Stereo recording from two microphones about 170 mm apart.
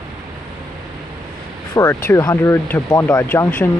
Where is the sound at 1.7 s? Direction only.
15° left (ahead or behind).